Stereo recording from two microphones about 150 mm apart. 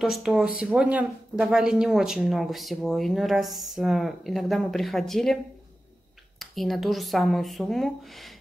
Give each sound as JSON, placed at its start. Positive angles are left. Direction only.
{"t": 0.2, "sound": "speech", "side_deg": -5}
{"t": 6.4, "sound": "speech", "side_deg": 0}